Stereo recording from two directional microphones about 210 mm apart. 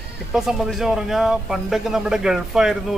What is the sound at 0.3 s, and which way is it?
Speech, centre (ahead or behind).